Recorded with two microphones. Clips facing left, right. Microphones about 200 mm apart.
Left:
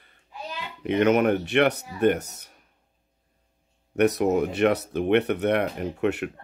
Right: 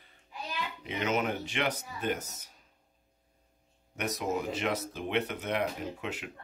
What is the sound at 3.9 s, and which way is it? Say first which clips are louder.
Speech: left 12 dB; 65° left (ahead or behind).